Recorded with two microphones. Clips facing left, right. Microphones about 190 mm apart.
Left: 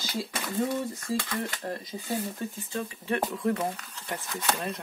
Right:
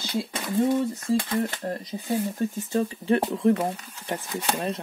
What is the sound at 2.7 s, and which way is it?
Speech, 30° right (ahead or behind).